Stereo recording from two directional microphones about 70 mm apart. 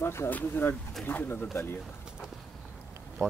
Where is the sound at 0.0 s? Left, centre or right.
Left.